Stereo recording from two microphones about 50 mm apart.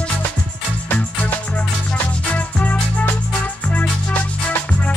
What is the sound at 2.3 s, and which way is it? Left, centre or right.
Music, left.